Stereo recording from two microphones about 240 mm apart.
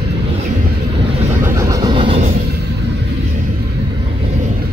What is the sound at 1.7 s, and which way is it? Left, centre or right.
Vehicle, centre.